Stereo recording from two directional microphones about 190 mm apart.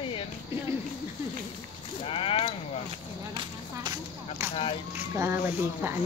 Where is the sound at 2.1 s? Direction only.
30° left (ahead or behind).